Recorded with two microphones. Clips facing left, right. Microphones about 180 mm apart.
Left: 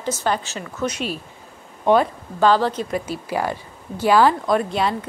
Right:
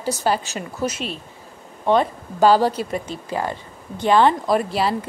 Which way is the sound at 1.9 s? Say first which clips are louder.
Left 2 dB; 20° left (ahead or behind).